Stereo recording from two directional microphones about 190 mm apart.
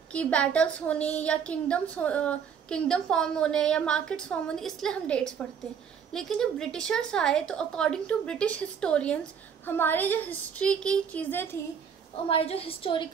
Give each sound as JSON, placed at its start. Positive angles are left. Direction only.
{"t": 0.1, "sound": "a woman's voice", "side_deg": 5}
{"t": 12.3, "sound": "a woman's voice", "side_deg": 30}